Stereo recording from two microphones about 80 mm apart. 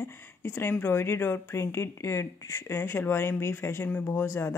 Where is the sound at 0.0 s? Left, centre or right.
Left.